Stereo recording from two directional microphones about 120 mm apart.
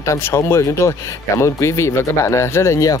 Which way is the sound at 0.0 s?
25° left (ahead or behind).